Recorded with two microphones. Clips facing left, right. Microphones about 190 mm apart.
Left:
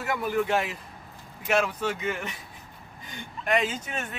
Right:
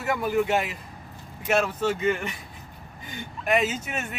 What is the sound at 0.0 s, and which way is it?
Speech, centre (ahead or behind).